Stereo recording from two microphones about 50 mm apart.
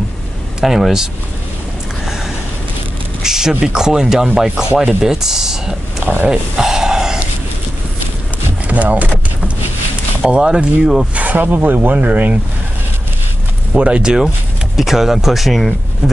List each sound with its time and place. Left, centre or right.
0.6 s speech: centre
3.2 s speech: centre
6.5 s a sound: centre
8.6 s speech: right
10.2 s speech: centre
11.1 s speech: right
13.7 s speech: right
14.8 s speech: centre